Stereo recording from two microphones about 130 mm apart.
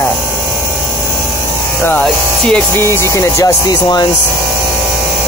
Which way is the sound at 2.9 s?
20° left (ahead or behind).